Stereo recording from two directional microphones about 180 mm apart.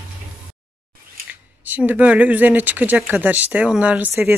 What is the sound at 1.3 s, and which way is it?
Speech, 10° right (ahead or behind).